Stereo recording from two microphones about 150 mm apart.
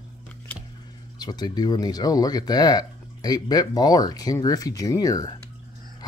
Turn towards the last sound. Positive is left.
turn(degrees=25)  # may be behind; listen again after turning